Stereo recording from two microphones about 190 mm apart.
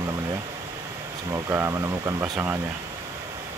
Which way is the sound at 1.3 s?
15° right (ahead or behind).